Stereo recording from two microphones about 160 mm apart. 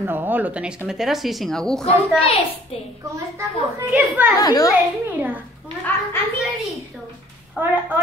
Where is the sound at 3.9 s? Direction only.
10° right (ahead or behind).